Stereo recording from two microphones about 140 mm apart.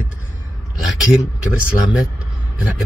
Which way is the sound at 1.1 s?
10° right (ahead or behind).